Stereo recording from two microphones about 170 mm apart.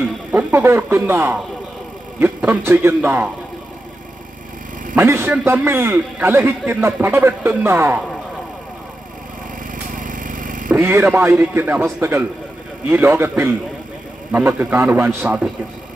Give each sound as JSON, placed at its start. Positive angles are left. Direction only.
{"t": 0.3, "sound": "a man's voice", "side_deg": -10}
{"t": 4.9, "sound": "a man's voice", "side_deg": -15}
{"t": 9.8, "sound": "a sound", "side_deg": -50}
{"t": 10.7, "sound": "a man's voice", "side_deg": -15}